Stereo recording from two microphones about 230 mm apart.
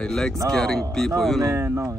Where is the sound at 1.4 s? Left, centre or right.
Centre.